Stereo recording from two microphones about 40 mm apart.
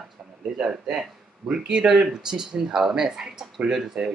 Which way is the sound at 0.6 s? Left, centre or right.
Right.